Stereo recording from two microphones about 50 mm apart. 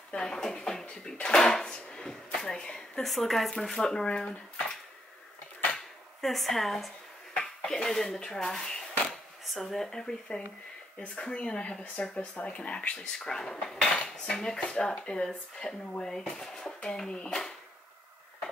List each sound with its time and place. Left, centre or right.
0.1 s speech: centre
3.0 s speech: centre
6.2 s speech: centre; by 16.1 s left
16.1 s speech: centre